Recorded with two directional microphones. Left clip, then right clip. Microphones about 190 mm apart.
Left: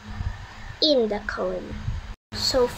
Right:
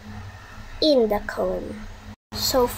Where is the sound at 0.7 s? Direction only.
15° right (ahead or behind).